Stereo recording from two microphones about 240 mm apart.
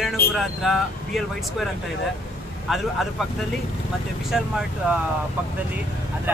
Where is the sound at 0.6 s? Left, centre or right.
Centre.